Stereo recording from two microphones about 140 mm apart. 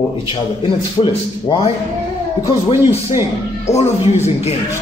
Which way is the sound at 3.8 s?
50° left (ahead or behind).